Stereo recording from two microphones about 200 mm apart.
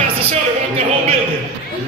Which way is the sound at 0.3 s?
30° right (ahead or behind).